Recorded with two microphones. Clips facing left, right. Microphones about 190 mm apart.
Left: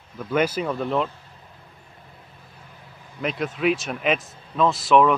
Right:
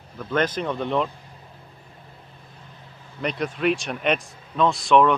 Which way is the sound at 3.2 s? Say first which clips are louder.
Even; centre (ahead or behind).